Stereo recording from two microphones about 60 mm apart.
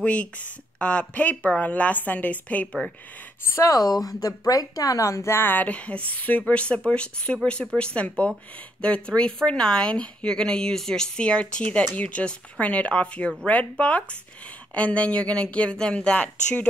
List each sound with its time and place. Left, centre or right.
0.0 s a woman's voice: left
3.5 s a woman's voice: left
5.4 s a woman's voice: left